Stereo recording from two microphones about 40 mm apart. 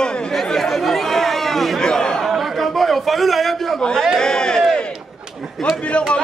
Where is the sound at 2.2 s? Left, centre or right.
Centre.